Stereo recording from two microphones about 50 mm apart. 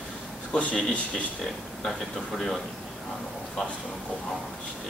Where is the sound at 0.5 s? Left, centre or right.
Left.